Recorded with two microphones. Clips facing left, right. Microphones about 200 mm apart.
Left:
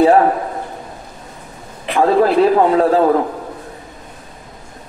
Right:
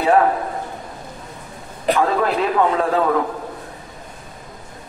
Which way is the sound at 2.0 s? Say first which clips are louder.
Left 8 dB; 35° left (ahead or behind).